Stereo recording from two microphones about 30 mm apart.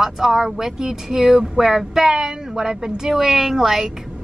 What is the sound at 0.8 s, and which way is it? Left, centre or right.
Speech, right.